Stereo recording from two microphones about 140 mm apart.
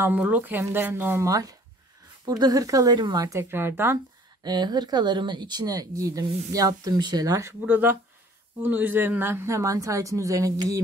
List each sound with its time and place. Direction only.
0.0 s speech: 10° right (ahead or behind)
4.4 s speech: 30° right (ahead or behind)
7.6 s speech: 15° right (ahead or behind)